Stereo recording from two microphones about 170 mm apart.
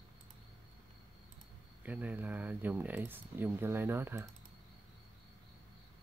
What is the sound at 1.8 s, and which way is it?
Speech, 10° right (ahead or behind).